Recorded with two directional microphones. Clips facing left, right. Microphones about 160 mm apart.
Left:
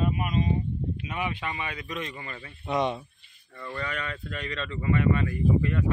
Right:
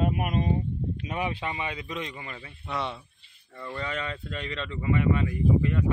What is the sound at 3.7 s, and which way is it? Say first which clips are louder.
Speech: right 1 dB; 20° right (ahead or behind).